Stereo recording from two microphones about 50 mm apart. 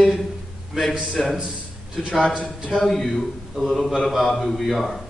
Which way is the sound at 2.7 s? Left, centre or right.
Centre.